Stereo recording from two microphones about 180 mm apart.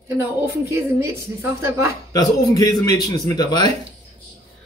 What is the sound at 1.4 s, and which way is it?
Speech, 15° right (ahead or behind).